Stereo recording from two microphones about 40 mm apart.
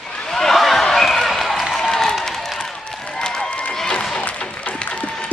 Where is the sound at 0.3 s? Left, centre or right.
Centre.